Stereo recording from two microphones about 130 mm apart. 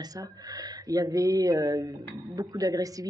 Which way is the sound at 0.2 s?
25° right (ahead or behind).